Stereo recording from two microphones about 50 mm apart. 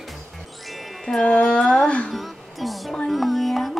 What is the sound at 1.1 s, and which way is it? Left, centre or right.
Speech, left.